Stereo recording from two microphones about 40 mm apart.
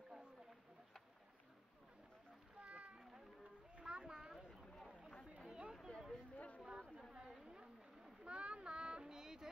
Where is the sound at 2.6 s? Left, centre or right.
Right.